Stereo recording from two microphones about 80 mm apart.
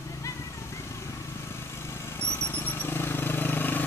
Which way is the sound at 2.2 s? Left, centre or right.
Centre.